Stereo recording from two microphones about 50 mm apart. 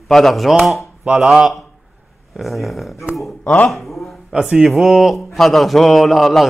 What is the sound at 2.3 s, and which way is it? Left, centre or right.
Speech, centre.